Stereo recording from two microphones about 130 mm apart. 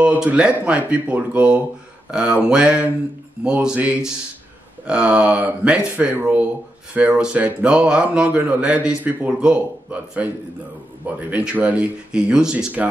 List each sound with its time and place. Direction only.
0.0 s speech: 10° right (ahead or behind)